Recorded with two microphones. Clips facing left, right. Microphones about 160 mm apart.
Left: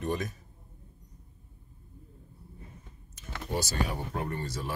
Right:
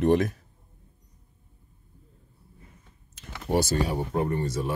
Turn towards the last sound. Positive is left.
turn(degrees=-25)  # may be behind; listen again after turning